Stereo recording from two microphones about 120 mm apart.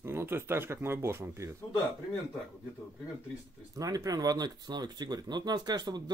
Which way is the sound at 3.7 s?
30° right (ahead or behind).